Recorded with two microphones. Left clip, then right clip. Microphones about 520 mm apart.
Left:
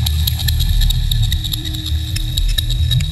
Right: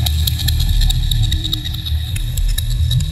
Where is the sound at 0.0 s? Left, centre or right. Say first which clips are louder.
Even; right.